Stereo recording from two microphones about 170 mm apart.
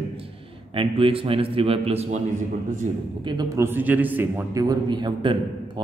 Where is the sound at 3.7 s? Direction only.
10° right (ahead or behind); by 5.3 s 25° right (ahead or behind).